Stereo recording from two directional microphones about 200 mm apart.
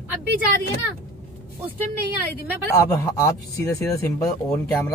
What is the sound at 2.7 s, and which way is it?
Speech, 15° left (ahead or behind).